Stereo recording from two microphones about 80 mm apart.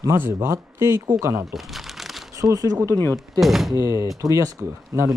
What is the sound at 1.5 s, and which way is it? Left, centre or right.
Crumpling, centre.